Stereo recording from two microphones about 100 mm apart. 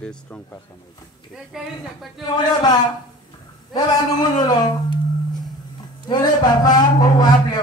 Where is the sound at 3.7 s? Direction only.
40° left (ahead or behind).